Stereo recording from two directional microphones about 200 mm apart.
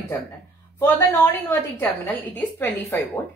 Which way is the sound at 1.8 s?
10° left (ahead or behind).